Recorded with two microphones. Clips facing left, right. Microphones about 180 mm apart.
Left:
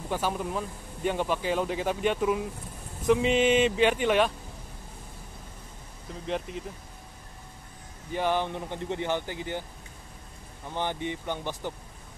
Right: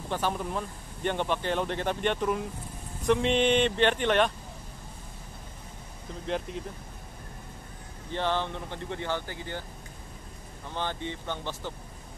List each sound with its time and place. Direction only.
0.1 s speech: 5° left (ahead or behind)
6.2 s speech: centre (ahead or behind)
8.1 s speech: 10° left (ahead or behind)
10.7 s speech: 15° left (ahead or behind)